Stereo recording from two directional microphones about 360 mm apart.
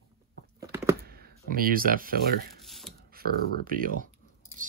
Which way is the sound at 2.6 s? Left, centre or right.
Centre.